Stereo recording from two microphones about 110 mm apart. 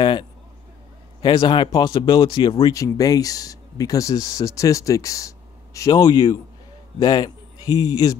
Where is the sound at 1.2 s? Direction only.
45° left (ahead or behind).